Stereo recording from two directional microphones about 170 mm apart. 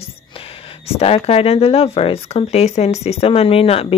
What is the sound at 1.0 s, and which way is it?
Speech, 35° left (ahead or behind).